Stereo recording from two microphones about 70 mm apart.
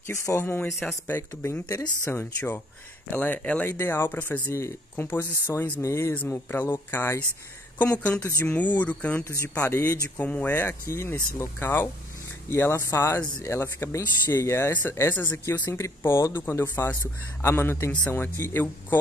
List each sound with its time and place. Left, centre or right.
0.0 s speech: left
0.4 s speech: left
3.6 s speech: left
4.5 s speech: left
4.9 s speech: left
5.5 s speech: left
6.1 s speech: left
7.8 s speech: centre
9.6 s speech: left
10.1 s speech: left
14.7 s speech: left